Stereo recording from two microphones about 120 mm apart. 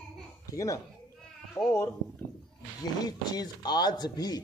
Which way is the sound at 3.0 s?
35° left (ahead or behind).